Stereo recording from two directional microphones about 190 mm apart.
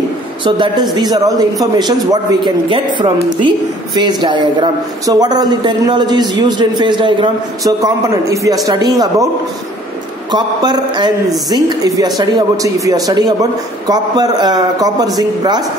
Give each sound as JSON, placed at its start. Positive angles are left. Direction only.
{"t": 0.4, "sound": "a woman's voice", "side_deg": -25}
{"t": 10.3, "sound": "a woman's voice", "side_deg": -20}